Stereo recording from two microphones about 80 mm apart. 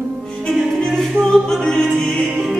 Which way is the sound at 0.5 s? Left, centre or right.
Centre.